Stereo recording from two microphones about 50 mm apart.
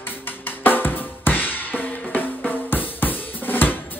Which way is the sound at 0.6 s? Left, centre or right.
Left.